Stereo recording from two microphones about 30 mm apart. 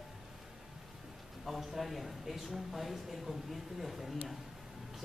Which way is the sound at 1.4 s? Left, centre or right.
Centre.